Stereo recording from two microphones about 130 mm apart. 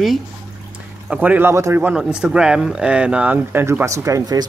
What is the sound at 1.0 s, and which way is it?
Speech, 10° right (ahead or behind).